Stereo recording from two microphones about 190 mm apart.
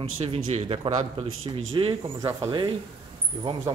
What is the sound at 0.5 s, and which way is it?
A man's voice, 30° right (ahead or behind).